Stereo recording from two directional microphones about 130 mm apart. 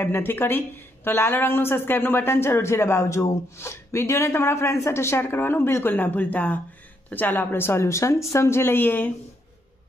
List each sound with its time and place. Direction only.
0.0 s a woman's voice: 15° left (ahead or behind)